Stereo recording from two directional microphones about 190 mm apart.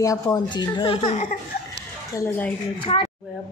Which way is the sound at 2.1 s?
10° left (ahead or behind).